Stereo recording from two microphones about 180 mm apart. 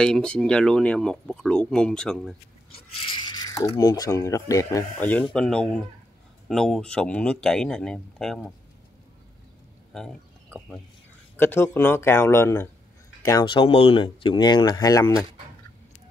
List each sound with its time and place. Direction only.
0.0 s speech: 5° left (ahead or behind)
2.7 s speech: 25° left (ahead or behind); by 8.5 s centre (ahead or behind)
9.9 s a sound: 5° left (ahead or behind)
11.3 s speech: 15° left (ahead or behind)